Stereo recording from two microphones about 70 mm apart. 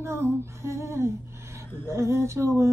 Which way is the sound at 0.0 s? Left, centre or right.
Right.